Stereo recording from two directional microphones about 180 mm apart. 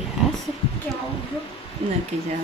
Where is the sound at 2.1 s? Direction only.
40° right (ahead or behind).